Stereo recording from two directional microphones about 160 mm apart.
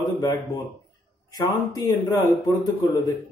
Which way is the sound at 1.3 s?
25° left (ahead or behind).